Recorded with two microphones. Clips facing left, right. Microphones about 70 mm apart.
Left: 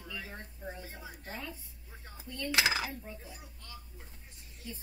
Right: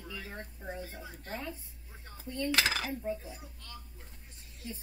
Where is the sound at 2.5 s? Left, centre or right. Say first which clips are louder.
Left 2 dB; centre.